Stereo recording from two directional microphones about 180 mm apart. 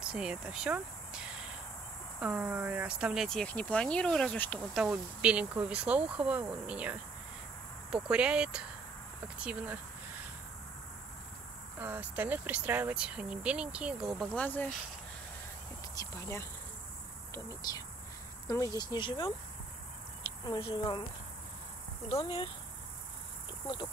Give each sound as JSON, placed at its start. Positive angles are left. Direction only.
{"t": 0.0, "sound": "speech", "side_deg": -5}
{"t": 4.8, "sound": "speech", "side_deg": -5}
{"t": 11.8, "sound": "speech", "side_deg": -10}
{"t": 15.9, "sound": "speech", "side_deg": 15}
{"t": 20.4, "sound": "speech", "side_deg": 25}
{"t": 22.1, "sound": "speech", "side_deg": 30}